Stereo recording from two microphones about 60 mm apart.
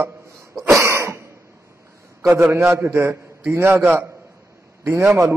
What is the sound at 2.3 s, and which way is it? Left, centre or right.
A man's voice, right.